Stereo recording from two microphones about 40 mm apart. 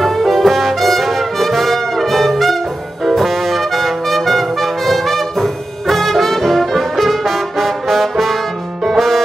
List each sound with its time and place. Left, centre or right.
0.0 s brass instrument: centre
8.8 s music: centre